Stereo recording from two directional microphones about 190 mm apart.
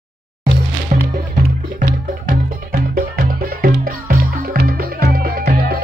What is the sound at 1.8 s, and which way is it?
Music, 50° right (ahead or behind).